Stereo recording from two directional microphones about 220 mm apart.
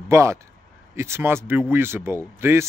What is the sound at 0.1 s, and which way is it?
Speech, 15° right (ahead or behind).